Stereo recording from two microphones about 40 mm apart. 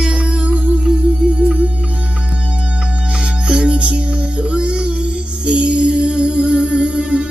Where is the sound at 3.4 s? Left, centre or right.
Right.